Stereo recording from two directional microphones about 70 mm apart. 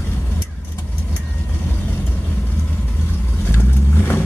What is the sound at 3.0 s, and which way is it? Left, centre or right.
Vehicle, left.